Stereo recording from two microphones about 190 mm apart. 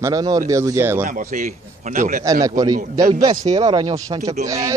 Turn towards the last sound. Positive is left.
turn(degrees=-15)  # may be behind; listen again after turning